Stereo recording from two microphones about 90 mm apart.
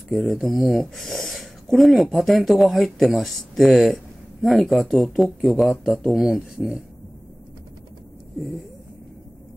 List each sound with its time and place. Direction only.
0.1 s speech: centre (ahead or behind)